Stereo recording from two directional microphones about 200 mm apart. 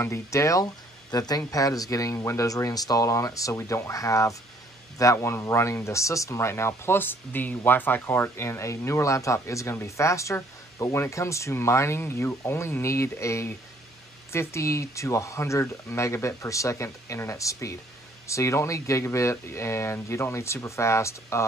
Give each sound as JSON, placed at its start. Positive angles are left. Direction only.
{"t": 0.0, "sound": "speech", "side_deg": 15}